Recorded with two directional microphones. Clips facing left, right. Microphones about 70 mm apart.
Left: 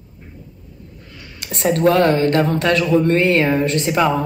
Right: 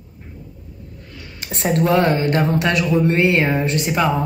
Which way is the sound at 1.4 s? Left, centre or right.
Right.